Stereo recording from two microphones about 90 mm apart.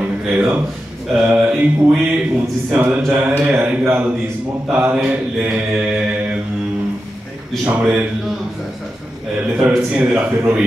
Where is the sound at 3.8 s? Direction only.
20° right (ahead or behind).